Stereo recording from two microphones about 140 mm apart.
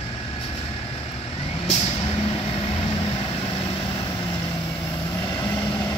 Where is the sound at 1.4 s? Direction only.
45° left (ahead or behind).